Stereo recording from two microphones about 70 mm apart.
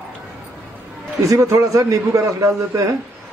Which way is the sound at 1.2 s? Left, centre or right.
Right.